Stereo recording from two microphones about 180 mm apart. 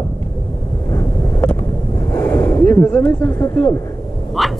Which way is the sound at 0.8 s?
20° left (ahead or behind).